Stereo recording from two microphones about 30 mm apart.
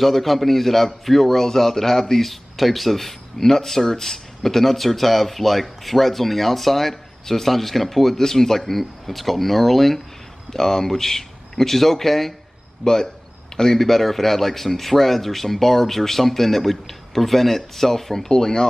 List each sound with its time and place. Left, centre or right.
0.0 s a man's voice: centre
2.2 s a man's voice: centre
12.8 s a man's voice: left
18.3 s speech: left